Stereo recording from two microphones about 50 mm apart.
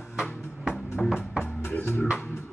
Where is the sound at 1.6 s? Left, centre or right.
Left.